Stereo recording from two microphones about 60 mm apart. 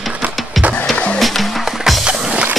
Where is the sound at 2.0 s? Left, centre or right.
Centre.